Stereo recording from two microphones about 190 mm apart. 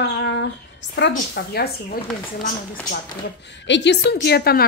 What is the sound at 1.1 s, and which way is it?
Speech, 55° left (ahead or behind).